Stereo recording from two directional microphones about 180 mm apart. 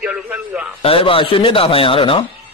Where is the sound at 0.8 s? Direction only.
30° left (ahead or behind).